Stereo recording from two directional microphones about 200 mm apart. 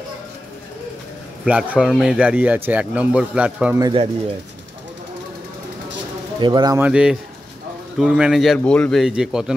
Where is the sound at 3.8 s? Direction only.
25° right (ahead or behind).